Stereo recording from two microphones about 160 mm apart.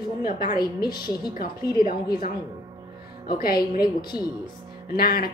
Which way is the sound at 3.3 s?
70° left (ahead or behind).